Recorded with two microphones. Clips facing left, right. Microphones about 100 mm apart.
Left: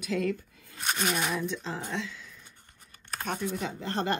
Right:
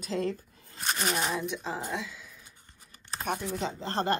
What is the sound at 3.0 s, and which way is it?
Computer keyboard, 20° right (ahead or behind).